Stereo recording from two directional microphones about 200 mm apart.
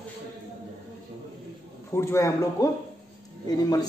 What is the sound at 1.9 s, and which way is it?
Speech, 15° left (ahead or behind).